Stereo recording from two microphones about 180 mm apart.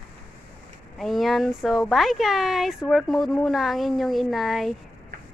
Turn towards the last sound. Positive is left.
turn(degrees=0)  # may be behind; listen again after turning